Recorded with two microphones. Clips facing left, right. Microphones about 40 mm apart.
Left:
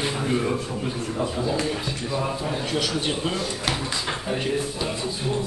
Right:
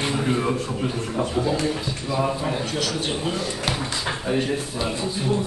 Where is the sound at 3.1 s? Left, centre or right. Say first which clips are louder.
Even; centre.